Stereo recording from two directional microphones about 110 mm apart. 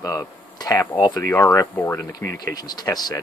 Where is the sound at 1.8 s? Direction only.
15° left (ahead or behind).